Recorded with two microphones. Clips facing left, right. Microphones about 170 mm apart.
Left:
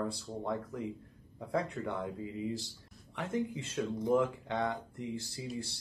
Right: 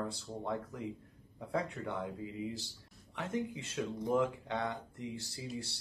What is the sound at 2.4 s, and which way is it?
Speech, 20° left (ahead or behind).